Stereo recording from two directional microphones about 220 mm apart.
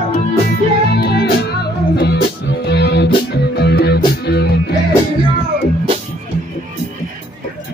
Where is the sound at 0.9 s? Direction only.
45° left (ahead or behind).